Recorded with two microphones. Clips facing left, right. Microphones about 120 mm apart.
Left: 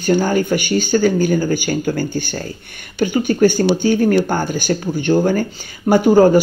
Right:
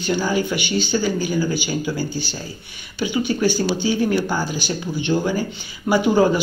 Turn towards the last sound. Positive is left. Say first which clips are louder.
# left 6 dB
turn(degrees=45)  # may be behind; listen again after turning